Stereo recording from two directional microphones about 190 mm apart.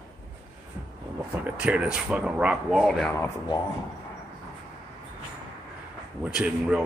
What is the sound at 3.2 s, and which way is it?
Speech, 20° left (ahead or behind).